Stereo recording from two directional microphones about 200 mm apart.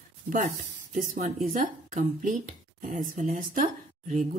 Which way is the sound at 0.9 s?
40° right (ahead or behind).